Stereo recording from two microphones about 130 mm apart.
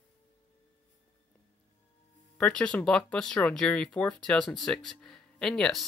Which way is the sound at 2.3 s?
5° left (ahead or behind).